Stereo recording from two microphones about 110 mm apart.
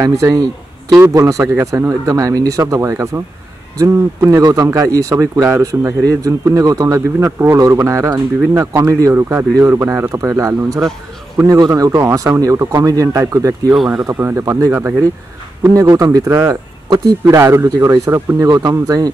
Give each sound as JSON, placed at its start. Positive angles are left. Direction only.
{"t": 0.0, "sound": "speech", "side_deg": -30}
{"t": 15.6, "sound": "speech", "side_deg": -35}